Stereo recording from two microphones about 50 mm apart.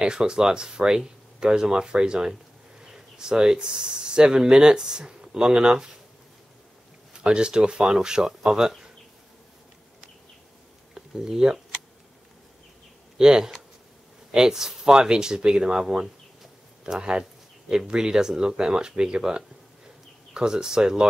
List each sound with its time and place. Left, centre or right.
0.0 s speech: centre
7.2 s speech: centre
11.0 s speech: centre
13.2 s speech: centre
16.8 s speech: centre